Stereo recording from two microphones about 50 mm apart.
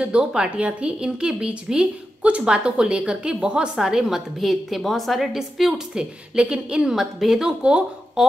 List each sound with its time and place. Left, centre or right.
0.0 s a woman's voice: centre
5.9 s a woman's voice: right